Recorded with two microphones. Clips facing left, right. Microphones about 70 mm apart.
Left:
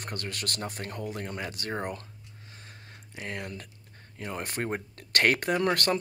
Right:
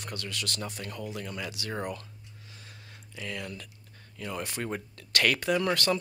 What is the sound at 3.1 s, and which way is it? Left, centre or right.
Speech, left.